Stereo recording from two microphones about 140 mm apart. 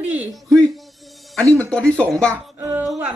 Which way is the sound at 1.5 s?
5° left (ahead or behind).